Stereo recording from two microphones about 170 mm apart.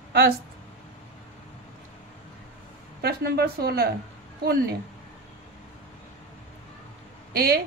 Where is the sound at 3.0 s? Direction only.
65° right (ahead or behind).